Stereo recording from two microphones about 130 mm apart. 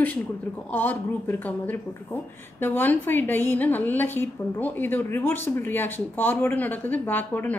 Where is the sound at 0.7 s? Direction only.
15° left (ahead or behind).